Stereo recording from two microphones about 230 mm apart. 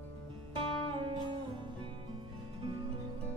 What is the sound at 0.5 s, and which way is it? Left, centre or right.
Music, right.